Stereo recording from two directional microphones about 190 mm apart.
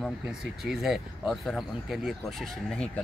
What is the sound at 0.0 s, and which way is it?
Speech, centre (ahead or behind).